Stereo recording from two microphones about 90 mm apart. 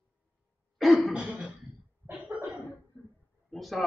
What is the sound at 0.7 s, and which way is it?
Cough, centre (ahead or behind).